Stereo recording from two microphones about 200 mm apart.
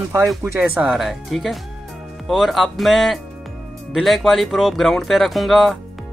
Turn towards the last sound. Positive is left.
turn(degrees=0)  # may be behind; listen again after turning